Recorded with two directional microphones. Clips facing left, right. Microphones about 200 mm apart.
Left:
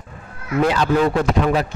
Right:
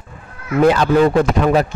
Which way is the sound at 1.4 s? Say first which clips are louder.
Right 4 dB; 50° right (ahead or behind).